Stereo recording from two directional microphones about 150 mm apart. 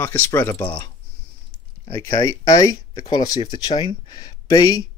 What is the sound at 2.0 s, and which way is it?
Speech, 25° left (ahead or behind).